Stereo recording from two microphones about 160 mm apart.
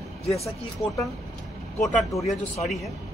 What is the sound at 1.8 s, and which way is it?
Speech, 20° left (ahead or behind).